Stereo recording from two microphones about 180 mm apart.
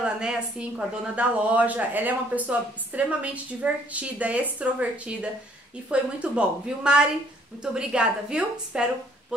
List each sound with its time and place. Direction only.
0.0 s a woman's voice: 5° right (ahead or behind)